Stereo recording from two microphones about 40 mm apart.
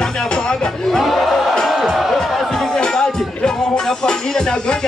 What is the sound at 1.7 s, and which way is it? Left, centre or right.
Music, centre.